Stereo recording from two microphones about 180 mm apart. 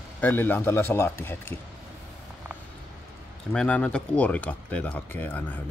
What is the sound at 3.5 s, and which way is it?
Speech, 5° left (ahead or behind).